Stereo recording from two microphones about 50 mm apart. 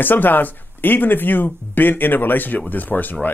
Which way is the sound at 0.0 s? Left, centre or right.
Left.